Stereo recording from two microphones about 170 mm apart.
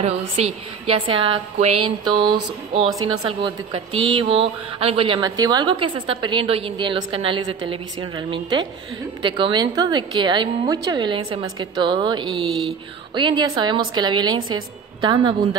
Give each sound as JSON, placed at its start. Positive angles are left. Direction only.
{"t": 0.0, "sound": "a woman's voice", "side_deg": -35}